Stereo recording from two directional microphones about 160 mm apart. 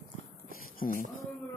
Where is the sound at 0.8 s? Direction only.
55° left (ahead or behind).